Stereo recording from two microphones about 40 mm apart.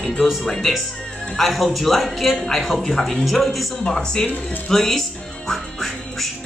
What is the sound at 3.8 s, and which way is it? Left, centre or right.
Speech, centre.